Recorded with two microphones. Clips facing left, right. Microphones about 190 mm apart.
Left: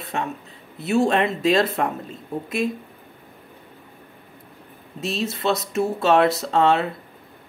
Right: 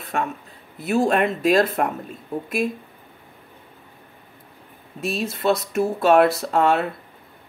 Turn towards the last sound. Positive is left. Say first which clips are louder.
# even
turn(degrees=25)  # may be behind; listen again after turning